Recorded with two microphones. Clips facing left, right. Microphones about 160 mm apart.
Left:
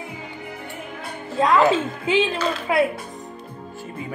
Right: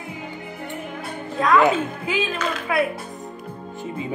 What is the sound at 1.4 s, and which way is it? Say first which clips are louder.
A woman's voice: even; 25° left (ahead or behind).